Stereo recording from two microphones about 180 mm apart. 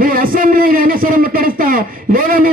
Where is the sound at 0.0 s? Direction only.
50° right (ahead or behind).